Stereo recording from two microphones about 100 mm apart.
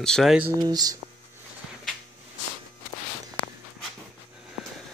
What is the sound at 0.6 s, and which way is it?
Speech, 40° right (ahead or behind).